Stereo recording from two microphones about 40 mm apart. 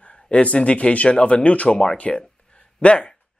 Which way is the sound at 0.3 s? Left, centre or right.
Left.